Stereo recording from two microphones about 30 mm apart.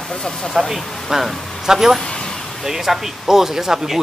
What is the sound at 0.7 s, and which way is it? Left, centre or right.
Speech, centre.